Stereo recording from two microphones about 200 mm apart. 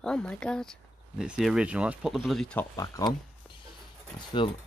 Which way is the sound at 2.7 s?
15° left (ahead or behind).